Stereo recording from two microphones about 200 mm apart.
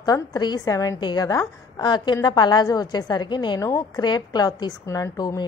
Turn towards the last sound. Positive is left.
turn(degrees=20)  # may be behind; listen again after turning